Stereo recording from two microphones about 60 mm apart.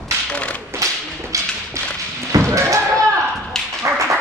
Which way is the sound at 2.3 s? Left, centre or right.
Right.